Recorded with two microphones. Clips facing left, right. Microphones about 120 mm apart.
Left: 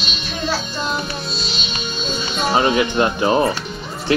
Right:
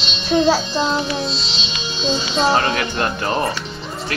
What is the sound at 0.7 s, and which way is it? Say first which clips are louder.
Speech: right 4 dB; 90° right.